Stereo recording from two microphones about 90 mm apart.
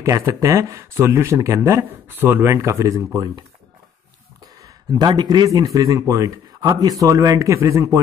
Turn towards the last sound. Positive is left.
turn(degrees=-35)  # may be behind; listen again after turning